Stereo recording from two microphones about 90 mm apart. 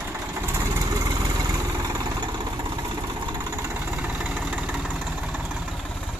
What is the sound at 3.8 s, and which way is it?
Vehicle, 20° right (ahead or behind).